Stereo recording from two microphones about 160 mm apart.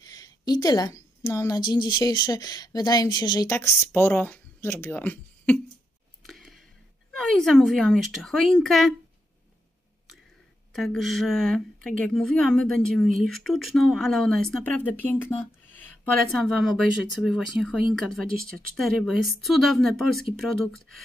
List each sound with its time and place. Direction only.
0.0 s a woman's voice: 25° left (ahead or behind)
6.2 s a sound: centre (ahead or behind)
7.2 s a woman's voice: centre (ahead or behind)
10.7 s a woman's voice: centre (ahead or behind)
16.6 s a woman's voice: centre (ahead or behind)